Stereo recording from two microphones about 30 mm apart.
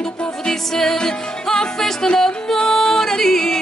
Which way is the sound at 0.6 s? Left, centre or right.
Centre.